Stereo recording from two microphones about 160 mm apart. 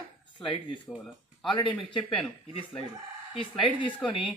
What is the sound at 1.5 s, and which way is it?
Speech, 30° left (ahead or behind).